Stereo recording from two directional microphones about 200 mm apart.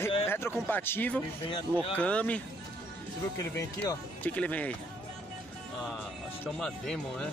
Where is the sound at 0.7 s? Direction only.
10° left (ahead or behind).